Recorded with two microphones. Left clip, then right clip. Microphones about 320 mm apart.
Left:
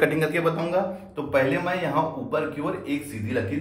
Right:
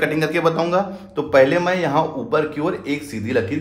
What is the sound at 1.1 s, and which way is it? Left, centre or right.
Speech, centre.